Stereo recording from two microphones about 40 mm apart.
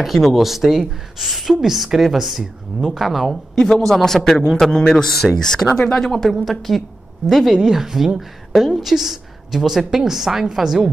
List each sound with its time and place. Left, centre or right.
0.0 s a woman's voice: centre
3.6 s a woman's voice: centre
7.5 s a woman's voice: centre